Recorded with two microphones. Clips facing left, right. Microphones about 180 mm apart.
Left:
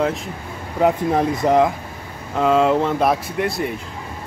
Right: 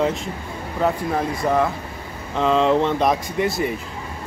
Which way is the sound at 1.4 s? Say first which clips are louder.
Left 4 dB; 20° left (ahead or behind).